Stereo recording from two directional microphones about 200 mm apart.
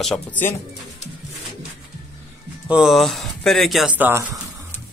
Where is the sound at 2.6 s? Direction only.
5° right (ahead or behind).